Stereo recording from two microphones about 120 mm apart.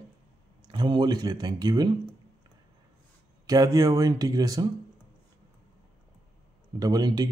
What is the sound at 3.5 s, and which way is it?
Speech, 30° right (ahead or behind).